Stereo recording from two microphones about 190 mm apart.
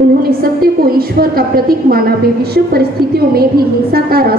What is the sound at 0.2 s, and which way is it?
A woman's voice, 50° right (ahead or behind).